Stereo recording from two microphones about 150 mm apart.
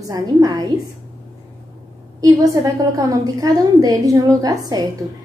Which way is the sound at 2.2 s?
20° right (ahead or behind).